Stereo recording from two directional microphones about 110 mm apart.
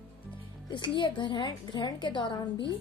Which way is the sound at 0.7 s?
45° left (ahead or behind).